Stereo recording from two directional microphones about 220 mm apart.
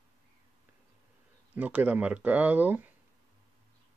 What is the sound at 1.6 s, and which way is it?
Speech, 5° right (ahead or behind).